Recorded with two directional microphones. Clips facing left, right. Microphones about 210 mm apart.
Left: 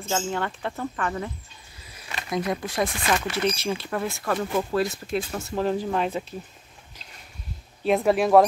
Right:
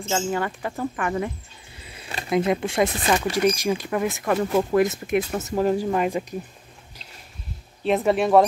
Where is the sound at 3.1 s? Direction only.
15° right (ahead or behind).